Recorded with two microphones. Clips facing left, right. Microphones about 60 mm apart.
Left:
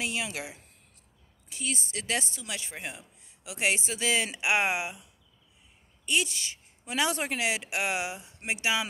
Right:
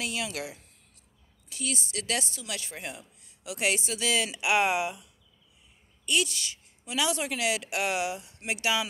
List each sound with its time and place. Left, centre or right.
0.0 s a woman's voice: left
6.0 s a woman's voice: left
6.8 s a woman's voice: left